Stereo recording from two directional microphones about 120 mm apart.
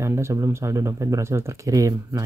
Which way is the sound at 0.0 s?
25° right (ahead or behind).